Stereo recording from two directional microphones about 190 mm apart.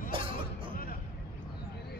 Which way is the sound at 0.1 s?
30° right (ahead or behind).